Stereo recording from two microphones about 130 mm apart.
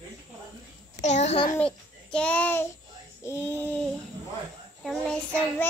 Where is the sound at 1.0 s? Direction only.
60° left (ahead or behind).